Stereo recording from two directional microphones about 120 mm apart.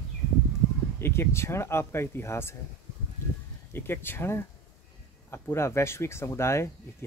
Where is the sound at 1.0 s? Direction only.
20° left (ahead or behind).